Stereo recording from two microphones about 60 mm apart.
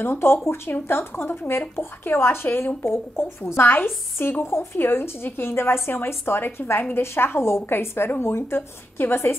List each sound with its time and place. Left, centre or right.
0.0 s speech: left